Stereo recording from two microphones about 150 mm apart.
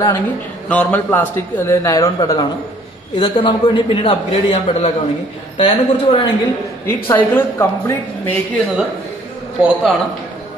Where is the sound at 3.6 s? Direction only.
35° left (ahead or behind).